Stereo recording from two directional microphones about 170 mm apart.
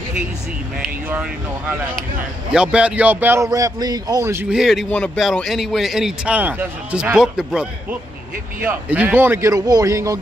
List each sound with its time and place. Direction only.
2.5 s a man's voice: 5° right (ahead or behind)
4.5 s a man's voice: centre (ahead or behind)
8.6 s a man's voice: 10° right (ahead or behind)